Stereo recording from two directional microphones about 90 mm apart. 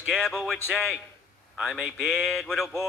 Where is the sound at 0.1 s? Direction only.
5° right (ahead or behind).